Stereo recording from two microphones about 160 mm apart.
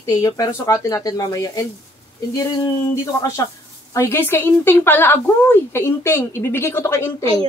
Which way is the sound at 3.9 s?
15° left (ahead or behind).